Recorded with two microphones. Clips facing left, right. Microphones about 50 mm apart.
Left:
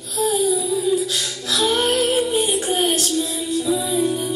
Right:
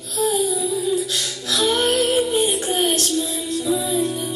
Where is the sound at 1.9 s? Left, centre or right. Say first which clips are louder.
Even; centre.